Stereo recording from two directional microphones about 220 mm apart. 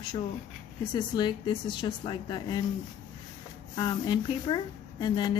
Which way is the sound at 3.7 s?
20° left (ahead or behind).